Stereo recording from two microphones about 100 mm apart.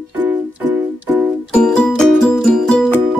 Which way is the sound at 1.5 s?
5° left (ahead or behind).